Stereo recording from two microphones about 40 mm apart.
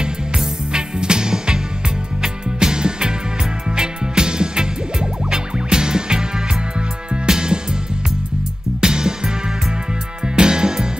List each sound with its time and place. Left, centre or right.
0.0 s music: right
8.8 s music: centre